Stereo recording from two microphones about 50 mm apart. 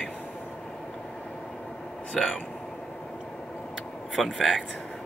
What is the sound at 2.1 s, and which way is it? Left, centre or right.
Speech, centre.